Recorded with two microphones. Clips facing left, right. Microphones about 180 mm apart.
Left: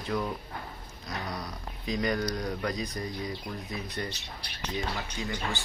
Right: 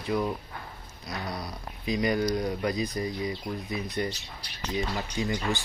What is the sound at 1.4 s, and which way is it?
Speech, 10° right (ahead or behind).